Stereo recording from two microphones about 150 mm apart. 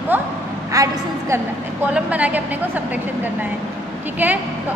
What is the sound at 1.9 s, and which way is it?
Speech, 10° right (ahead or behind).